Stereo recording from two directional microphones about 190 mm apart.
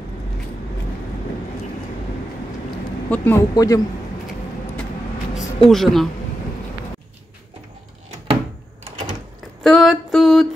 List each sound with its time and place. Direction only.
3.1 s speech: 10° left (ahead or behind)
5.7 s speech: centre (ahead or behind)
9.6 s a sound: centre (ahead or behind)